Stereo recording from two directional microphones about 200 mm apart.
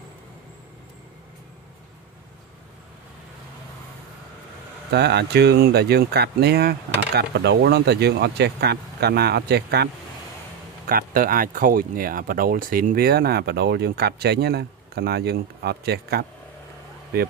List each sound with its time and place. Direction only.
4.9 s speech: 55° right (ahead or behind)
10.9 s speech: 45° right (ahead or behind)